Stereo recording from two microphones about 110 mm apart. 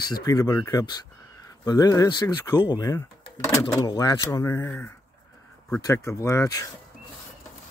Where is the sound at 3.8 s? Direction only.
35° left (ahead or behind).